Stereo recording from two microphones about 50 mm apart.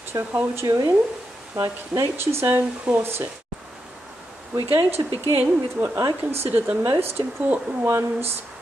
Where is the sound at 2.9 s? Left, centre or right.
Right.